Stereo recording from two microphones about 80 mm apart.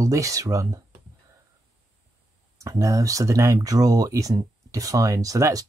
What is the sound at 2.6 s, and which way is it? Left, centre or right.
Speech, right.